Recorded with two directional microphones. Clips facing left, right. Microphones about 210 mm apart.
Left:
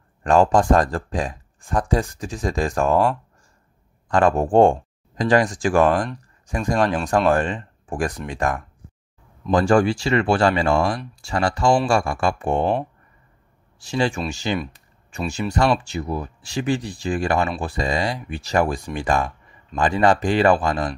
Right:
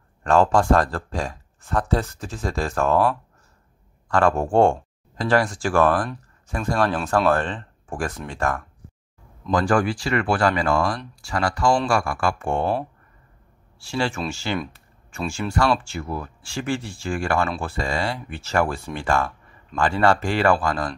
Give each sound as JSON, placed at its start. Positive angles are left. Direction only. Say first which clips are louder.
{"t": 0.2, "sound": "speech", "louder": "left 2 dB", "side_deg": 15}
{"t": 4.1, "sound": "speech", "louder": "left 2 dB", "side_deg": 15}
{"t": 13.7, "sound": "speech", "louder": "left 3 dB", "side_deg": 20}